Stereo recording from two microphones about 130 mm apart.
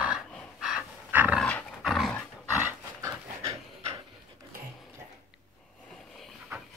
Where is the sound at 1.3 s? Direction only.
10° left (ahead or behind).